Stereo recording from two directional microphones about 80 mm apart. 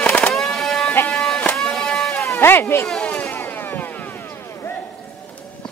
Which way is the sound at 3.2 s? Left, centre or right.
Left.